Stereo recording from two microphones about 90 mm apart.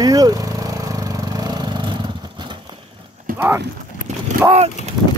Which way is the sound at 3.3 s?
25° right (ahead or behind).